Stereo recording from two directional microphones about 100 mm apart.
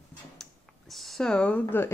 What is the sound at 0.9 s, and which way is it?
Speech, centre (ahead or behind).